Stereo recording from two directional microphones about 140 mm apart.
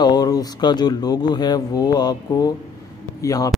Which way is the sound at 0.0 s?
30° left (ahead or behind).